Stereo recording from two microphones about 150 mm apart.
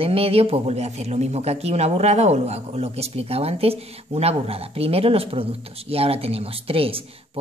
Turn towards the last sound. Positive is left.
turn(degrees=-40)  # may be behind; listen again after turning